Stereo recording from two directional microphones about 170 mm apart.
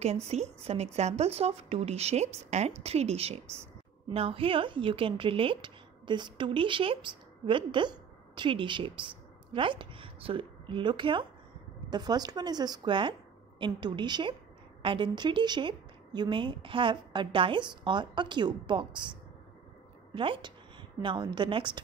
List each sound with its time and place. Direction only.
0.0 s a woman's voice: 40° right (ahead or behind)
20.2 s a woman's voice: 30° right (ahead or behind)